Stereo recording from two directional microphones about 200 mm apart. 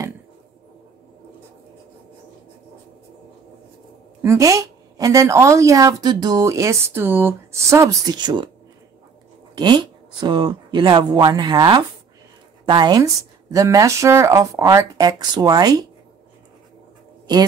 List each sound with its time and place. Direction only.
4.2 s a woman's voice: 15° right (ahead or behind)
9.6 s a woman's voice: 20° right (ahead or behind)